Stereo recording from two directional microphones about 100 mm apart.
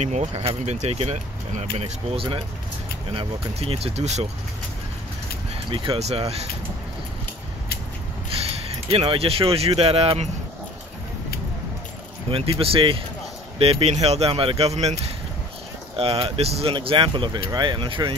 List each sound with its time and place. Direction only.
0.4 s speech: 90° right
1.8 s speech: 80° right
5.7 s speech: 75° right (ahead or behind)
8.6 s speech: 80° right
12.3 s speech: 65° right (ahead or behind)
13.6 s speech: 80° right
16.0 s speech: 75° right (ahead or behind)
16.7 s speech: 55° right (ahead or behind)